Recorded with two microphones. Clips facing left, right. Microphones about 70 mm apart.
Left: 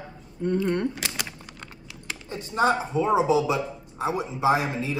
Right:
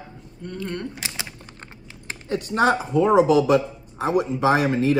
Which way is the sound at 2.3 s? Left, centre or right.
Right.